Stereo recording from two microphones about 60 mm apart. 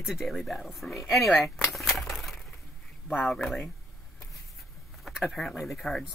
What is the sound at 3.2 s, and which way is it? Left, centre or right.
Speech, centre.